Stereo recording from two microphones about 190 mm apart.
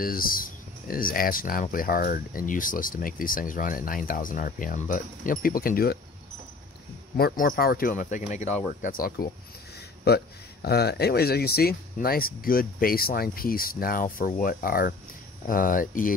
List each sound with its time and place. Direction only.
0.0 s speech: 50° left (ahead or behind)
7.2 s speech: 50° left (ahead or behind)
8.8 s speech: 50° left (ahead or behind)